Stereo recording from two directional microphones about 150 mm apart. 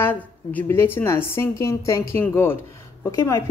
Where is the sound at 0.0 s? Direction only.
15° left (ahead or behind).